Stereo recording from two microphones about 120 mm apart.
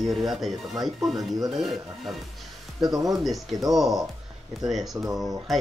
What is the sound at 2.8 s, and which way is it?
Speech, 30° right (ahead or behind).